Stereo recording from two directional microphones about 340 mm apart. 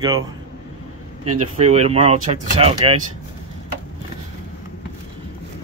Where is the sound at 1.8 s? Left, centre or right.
Centre.